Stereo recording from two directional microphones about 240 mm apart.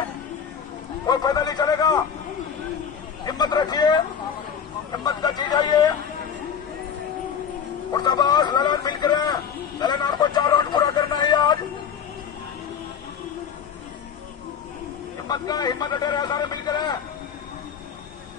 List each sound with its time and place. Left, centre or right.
1.0 s a man's voice: centre
3.3 s a man's voice: centre
7.9 s speech: centre
15.2 s a man's voice: centre